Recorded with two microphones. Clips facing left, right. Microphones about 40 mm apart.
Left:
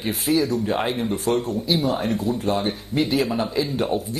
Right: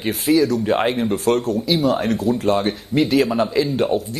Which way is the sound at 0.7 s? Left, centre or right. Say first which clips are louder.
Right 5 dB; right.